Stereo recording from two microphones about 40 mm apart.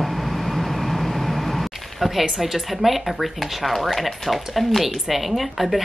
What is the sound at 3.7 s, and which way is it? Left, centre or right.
A woman's voice, centre.